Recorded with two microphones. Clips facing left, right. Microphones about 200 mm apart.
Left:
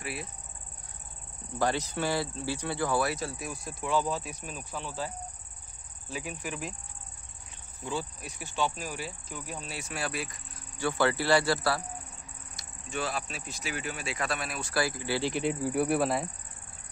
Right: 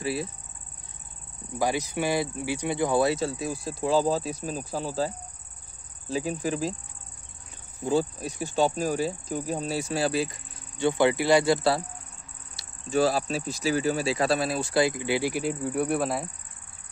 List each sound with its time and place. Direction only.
0.0 s speech: 30° right (ahead or behind)
1.6 s speech: 10° right (ahead or behind); by 5.1 s 35° right (ahead or behind)
6.1 s speech: 35° right (ahead or behind)
7.8 s speech: 40° right (ahead or behind)
10.8 s speech: 20° right (ahead or behind)
12.5 s speech: 35° right (ahead or behind); by 16.3 s centre (ahead or behind)